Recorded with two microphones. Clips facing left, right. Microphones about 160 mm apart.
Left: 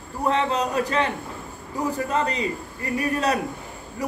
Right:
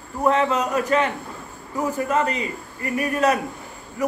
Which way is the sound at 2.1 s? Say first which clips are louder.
Right 2 dB; 30° left (ahead or behind).